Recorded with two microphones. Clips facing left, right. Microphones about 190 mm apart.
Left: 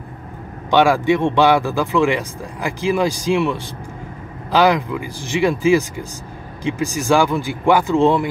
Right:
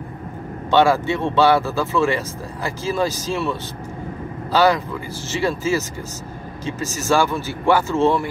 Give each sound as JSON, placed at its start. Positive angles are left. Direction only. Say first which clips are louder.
{"t": 0.7, "sound": "speech", "louder": "left 2 dB", "side_deg": 15}